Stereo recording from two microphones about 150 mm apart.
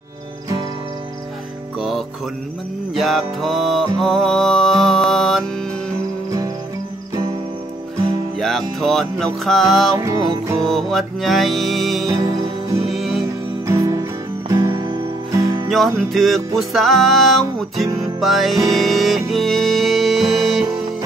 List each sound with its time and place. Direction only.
1.8 s music: centre (ahead or behind)
8.4 s music: centre (ahead or behind)
9.9 s music: 25° right (ahead or behind)
10.6 s music: centre (ahead or behind)
12.1 s music: 20° right (ahead or behind)
12.8 s music: centre (ahead or behind)
13.7 s music: 20° right (ahead or behind)
15.7 s music: centre (ahead or behind)